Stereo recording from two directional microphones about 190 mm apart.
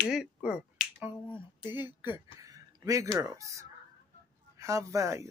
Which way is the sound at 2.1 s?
20° right (ahead or behind).